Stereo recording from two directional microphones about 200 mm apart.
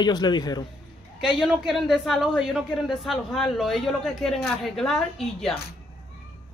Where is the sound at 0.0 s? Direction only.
20° left (ahead or behind).